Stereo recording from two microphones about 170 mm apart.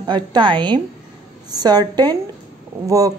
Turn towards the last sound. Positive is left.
turn(degrees=-20)  # may be behind; listen again after turning